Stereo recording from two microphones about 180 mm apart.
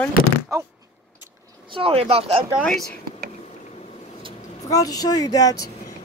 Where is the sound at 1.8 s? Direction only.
35° right (ahead or behind).